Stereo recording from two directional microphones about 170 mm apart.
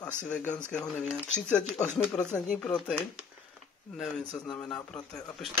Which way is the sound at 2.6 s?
5° left (ahead or behind).